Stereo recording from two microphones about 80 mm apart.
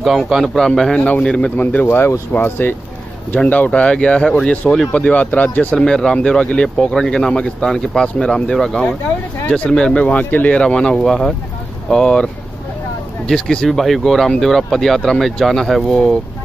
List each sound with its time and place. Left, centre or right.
0.2 s speech: centre
1.9 s speech: left; by 12.3 s centre
13.3 s speech: centre